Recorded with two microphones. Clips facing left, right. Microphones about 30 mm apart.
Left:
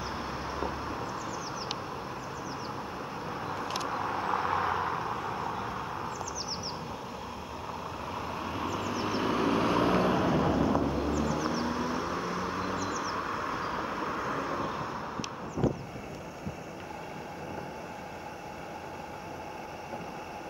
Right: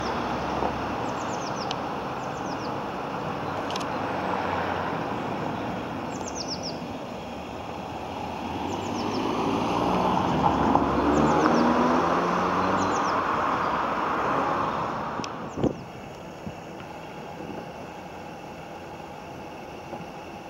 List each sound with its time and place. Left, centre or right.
0.0 s vehicle: right
1.0 s vehicle: right
3.3 s vehicle: right
3.6 s vehicle: centre
3.9 s vehicle: centre
9.0 s vehicle: centre
10.3 s vehicle: right
10.7 s vehicle: right
11.1 s vehicle: right
11.4 s vehicle: right